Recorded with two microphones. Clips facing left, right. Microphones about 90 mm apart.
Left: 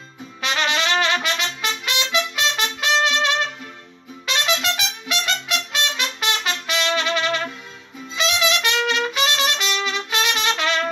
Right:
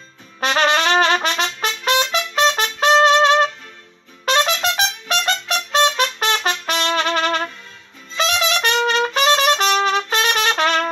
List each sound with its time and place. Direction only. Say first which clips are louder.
0.4 s trumpet: right 5 dB; 40° right (ahead or behind)
4.3 s music: right 5 dB; 40° right (ahead or behind)
8.2 s trumpet: right 2 dB; 40° right (ahead or behind)